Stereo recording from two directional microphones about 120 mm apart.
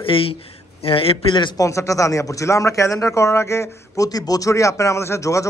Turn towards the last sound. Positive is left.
turn(degrees=25)  # may be behind; listen again after turning